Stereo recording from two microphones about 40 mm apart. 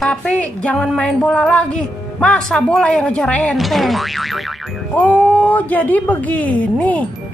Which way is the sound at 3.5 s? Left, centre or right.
Centre.